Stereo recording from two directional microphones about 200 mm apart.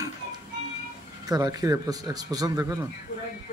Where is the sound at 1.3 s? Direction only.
20° right (ahead or behind).